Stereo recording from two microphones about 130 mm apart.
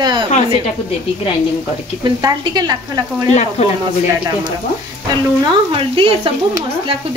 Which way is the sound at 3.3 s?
55° left (ahead or behind).